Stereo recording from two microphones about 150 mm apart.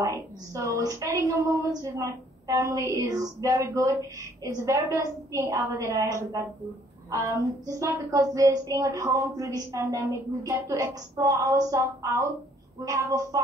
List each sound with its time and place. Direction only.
0.0 s a woman's voice: 20° right (ahead or behind)